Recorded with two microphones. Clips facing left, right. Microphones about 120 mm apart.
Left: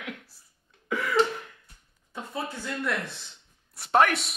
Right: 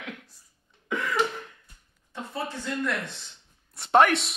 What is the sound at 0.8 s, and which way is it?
Cough, 5° left (ahead or behind).